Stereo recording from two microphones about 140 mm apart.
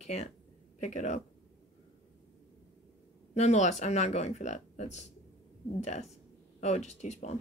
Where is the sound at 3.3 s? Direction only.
55° left (ahead or behind).